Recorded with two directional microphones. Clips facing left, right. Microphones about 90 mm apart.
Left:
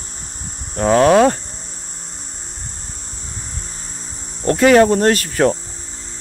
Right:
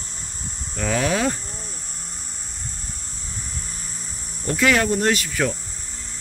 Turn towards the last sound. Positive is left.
turn(degrees=45)  # may be behind; listen again after turning